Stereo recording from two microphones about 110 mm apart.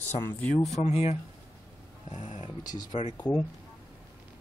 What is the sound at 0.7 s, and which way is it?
Speech, 80° left.